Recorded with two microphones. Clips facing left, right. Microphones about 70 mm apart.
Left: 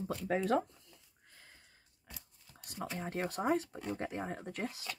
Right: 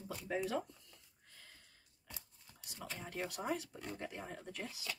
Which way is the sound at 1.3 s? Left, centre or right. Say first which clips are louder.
Left 1 dB; centre.